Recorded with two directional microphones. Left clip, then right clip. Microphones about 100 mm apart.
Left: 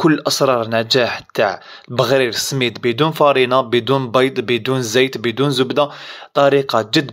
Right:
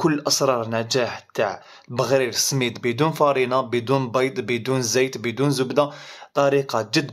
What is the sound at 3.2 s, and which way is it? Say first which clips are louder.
Speech: left 7 dB; 40° left (ahead or behind).